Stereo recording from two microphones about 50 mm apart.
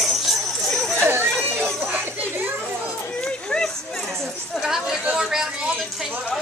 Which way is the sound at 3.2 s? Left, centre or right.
Centre.